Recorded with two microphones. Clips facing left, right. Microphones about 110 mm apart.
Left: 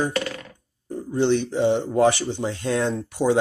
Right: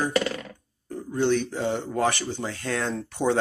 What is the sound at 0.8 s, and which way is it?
Speech, 20° left (ahead or behind).